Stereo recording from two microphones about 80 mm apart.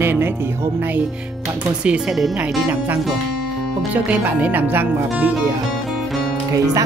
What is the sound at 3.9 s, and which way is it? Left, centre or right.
Speech, centre.